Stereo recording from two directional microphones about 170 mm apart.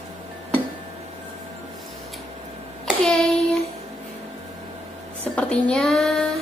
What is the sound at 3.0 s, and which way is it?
Child singing, 5° left (ahead or behind).